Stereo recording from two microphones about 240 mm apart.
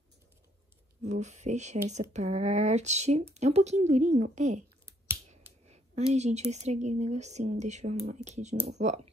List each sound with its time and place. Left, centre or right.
1.0 s speech: right
5.7 s a sound: right
6.5 s speech: right